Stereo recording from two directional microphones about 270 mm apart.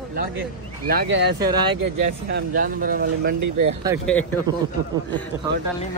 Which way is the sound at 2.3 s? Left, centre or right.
Right.